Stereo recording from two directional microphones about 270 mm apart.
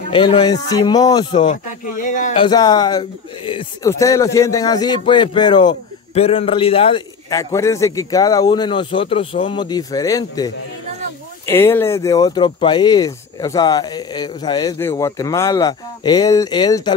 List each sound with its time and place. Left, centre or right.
0.1 s speech: centre
1.5 s speech: left
2.3 s speech: centre